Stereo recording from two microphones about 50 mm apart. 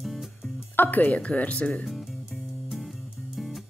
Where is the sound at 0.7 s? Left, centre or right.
Left.